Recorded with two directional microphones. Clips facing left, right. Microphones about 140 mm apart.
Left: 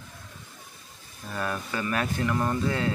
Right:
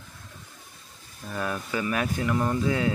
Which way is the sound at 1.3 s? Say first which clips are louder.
Right 1 dB; 5° right (ahead or behind).